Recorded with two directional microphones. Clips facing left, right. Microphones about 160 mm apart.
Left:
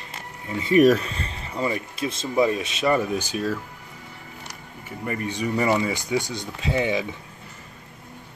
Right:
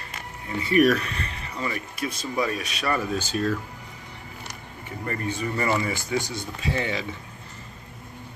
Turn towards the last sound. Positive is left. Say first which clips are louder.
# left 4 dB
turn(degrees=15)  # may be behind; listen again after turning